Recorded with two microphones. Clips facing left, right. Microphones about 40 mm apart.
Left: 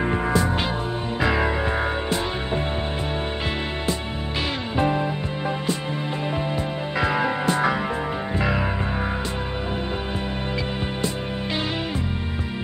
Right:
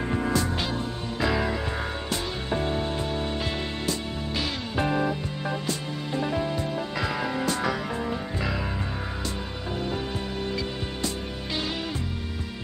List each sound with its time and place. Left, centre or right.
0.0 s music: left
4.7 s music: centre
6.3 s music: left